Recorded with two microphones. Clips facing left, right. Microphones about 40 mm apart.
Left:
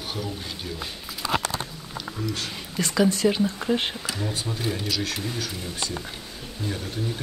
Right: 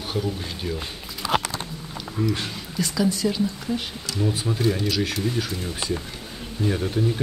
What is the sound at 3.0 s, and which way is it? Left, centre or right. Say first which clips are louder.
Speech: left 2 dB; left.